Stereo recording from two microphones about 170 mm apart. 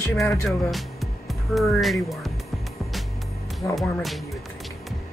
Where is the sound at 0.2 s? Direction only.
Centre (ahead or behind).